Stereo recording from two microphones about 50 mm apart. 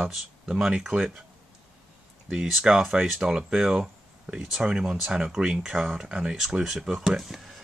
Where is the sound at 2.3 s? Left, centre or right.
Centre.